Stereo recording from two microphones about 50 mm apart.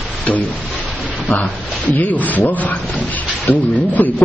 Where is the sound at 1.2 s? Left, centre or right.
Left.